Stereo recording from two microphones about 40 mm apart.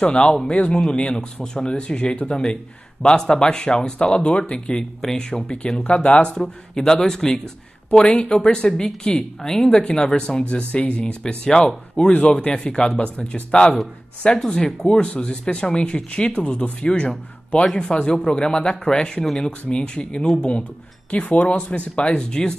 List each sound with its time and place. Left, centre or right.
0.0 s a man's voice: left
5.3 s a man's voice: left
10.5 s a man's voice: left
11.4 s a man's voice: centre
12.2 s a man's voice: left; by 19.5 s centre
19.7 s a man's voice: left
21.1 s speech: left